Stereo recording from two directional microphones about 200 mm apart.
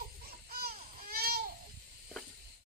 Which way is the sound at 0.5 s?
50° right (ahead or behind).